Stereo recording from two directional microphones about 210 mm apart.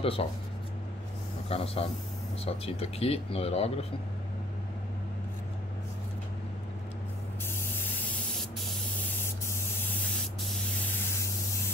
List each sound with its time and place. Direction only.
0.0 s speech: 25° left (ahead or behind)
1.5 s speech: 30° left (ahead or behind)